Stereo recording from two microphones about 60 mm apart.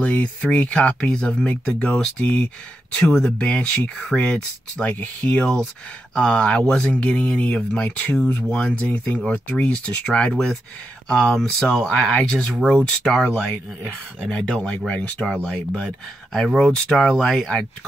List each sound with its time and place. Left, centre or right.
0.0 s speech: left